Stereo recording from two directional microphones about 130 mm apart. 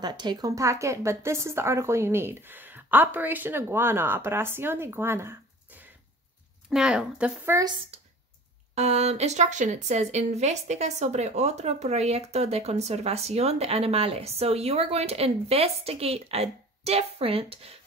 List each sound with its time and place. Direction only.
0.0 s a woman's voice: 35° right (ahead or behind); by 5.9 s 15° right (ahead or behind)
6.7 s speech: 5° right (ahead or behind)
8.7 s speech: 55° right (ahead or behind)